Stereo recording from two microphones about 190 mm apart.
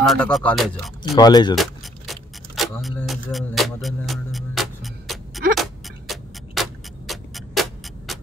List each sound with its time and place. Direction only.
0.0 s speech: centre (ahead or behind)
1.1 s speech: 20° left (ahead or behind)
1.5 s keys jangling: centre (ahead or behind)
2.8 s music: centre (ahead or behind)